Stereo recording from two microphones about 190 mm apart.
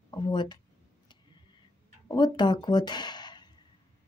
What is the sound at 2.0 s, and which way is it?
Speech, 20° left (ahead or behind).